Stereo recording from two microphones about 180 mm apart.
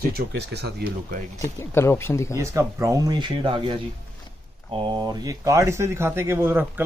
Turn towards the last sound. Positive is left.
turn(degrees=-10)  # may be behind; listen again after turning